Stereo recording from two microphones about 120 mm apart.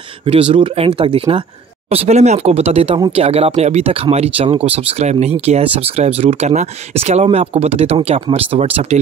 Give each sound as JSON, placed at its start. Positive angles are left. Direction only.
{"t": 0.2, "sound": "speech", "side_deg": -50}
{"t": 1.9, "sound": "speech", "side_deg": -60}